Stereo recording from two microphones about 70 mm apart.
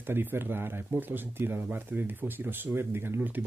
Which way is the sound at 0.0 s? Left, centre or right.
Right.